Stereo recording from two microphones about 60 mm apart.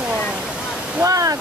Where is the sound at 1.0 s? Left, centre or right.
Right.